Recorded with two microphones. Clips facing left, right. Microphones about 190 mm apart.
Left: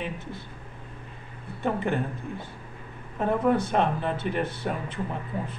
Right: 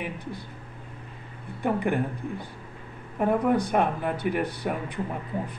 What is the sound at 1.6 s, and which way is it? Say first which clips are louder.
Speech: right 1 dB; 15° right (ahead or behind).